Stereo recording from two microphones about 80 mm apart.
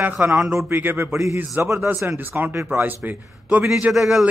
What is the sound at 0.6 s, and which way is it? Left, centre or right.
Speech, right.